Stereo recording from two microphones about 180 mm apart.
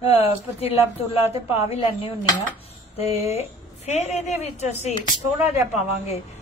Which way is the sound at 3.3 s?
40° left (ahead or behind).